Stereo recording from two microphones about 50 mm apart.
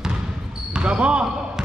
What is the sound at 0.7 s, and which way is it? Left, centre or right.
Speech, right.